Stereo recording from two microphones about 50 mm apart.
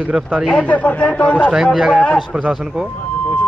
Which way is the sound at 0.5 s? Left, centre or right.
Left.